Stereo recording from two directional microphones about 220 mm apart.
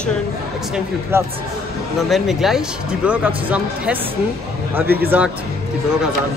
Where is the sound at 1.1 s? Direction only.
10° right (ahead or behind).